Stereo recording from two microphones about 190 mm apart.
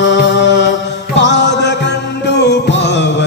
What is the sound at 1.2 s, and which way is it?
Mantra, 65° left (ahead or behind).